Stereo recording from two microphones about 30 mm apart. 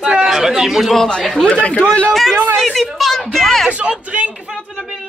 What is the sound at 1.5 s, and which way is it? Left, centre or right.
Speech, left.